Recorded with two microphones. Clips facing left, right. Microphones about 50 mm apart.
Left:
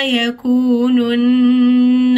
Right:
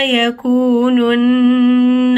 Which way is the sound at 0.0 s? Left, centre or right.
Centre.